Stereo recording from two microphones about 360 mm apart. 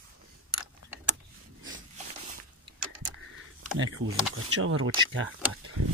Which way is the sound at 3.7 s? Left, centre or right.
Right.